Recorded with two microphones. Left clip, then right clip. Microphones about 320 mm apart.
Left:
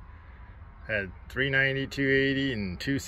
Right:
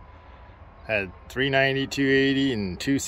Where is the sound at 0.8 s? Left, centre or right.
Centre.